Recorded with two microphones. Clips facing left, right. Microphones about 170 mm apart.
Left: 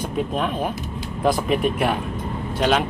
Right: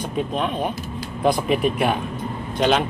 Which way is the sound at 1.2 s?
Centre (ahead or behind).